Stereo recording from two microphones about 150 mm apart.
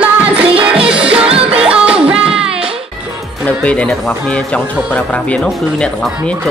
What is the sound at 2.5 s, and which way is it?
Music, 40° right (ahead or behind).